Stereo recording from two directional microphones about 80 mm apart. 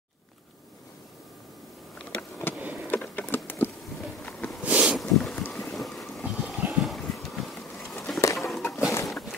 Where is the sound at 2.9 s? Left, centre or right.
Left.